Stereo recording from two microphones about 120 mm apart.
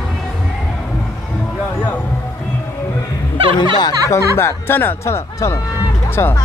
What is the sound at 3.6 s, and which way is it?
Speech, 35° left (ahead or behind).